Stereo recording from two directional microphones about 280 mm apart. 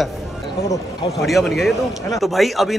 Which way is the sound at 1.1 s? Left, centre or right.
Centre.